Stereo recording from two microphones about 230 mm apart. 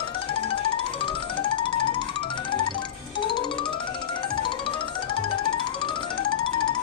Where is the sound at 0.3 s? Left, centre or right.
Left.